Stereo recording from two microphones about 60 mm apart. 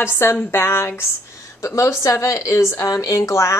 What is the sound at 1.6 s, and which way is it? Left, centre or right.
A woman's voice, left.